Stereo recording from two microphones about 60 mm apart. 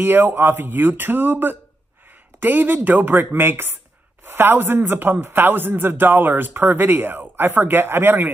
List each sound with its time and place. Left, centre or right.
0.0 s a man's voice: right